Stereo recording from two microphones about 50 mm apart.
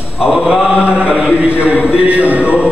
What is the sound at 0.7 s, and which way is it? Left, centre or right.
A man's voice, right.